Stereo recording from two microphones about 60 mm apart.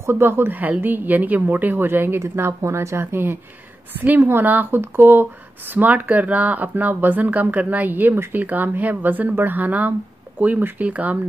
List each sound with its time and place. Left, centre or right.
0.0 s speech: right
2.2 s speech: right